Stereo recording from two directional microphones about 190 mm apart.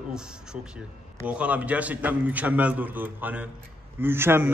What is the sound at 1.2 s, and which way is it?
A man's voice, 5° right (ahead or behind).